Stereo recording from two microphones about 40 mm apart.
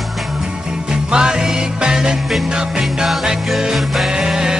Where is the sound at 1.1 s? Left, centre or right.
Right.